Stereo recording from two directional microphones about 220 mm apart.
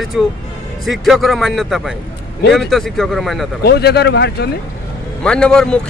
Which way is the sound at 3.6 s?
50° left (ahead or behind).